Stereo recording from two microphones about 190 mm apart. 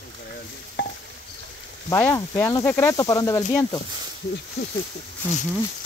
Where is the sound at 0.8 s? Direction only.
65° left (ahead or behind).